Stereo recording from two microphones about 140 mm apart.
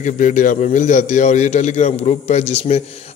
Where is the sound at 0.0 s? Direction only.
60° left (ahead or behind).